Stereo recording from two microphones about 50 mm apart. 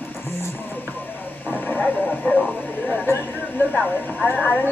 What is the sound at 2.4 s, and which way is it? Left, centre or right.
Speech, centre.